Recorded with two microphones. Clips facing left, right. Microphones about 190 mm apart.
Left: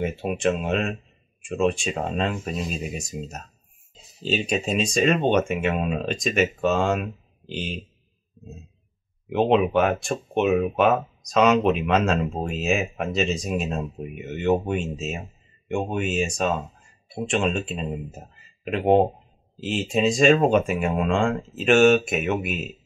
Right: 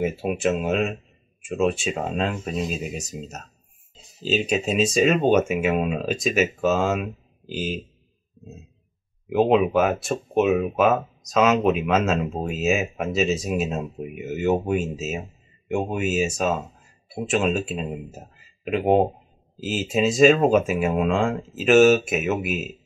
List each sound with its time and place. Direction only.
0.0 s speech: 5° right (ahead or behind)
9.3 s speech: centre (ahead or behind)